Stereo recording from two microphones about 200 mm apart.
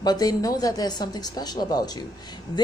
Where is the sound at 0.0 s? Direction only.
20° left (ahead or behind).